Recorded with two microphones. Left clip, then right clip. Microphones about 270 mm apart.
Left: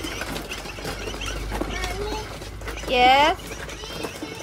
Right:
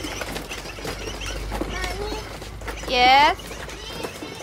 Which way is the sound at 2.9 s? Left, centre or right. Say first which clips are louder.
Even; right.